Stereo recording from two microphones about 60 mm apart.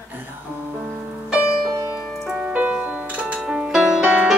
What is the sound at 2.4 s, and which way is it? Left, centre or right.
Music, right.